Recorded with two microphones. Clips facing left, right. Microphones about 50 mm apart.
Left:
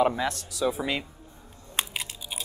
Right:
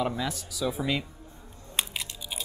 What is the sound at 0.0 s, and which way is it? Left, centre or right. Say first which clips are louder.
Speech: left 5 dB; left.